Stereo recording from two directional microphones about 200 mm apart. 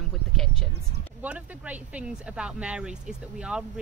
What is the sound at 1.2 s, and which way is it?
A woman's voice, 5° right (ahead or behind).